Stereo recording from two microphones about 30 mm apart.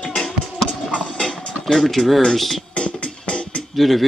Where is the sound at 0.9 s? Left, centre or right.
Left.